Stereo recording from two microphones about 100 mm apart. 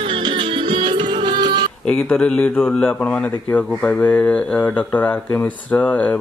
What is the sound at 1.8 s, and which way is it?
Speech, 10° left (ahead or behind).